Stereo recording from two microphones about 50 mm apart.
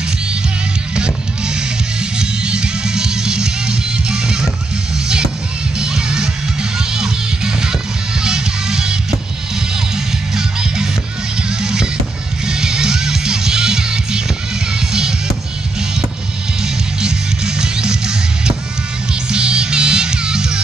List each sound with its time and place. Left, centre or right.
0.9 s music: centre
9.9 s music: centre
17.0 s music: centre